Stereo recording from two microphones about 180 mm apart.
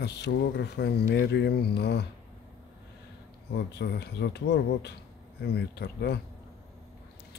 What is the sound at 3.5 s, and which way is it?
Speech, 65° left (ahead or behind).